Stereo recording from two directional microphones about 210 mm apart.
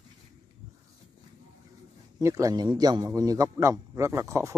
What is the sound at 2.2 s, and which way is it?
A man's voice, 15° right (ahead or behind).